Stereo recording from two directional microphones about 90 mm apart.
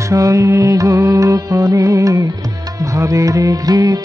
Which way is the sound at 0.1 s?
40° right (ahead or behind).